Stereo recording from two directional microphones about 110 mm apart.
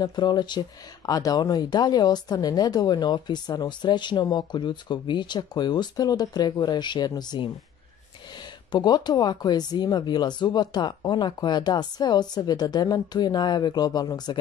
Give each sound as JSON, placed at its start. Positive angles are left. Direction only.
{"t": 0.0, "sound": "speech", "side_deg": 40}
{"t": 8.7, "sound": "speech", "side_deg": 40}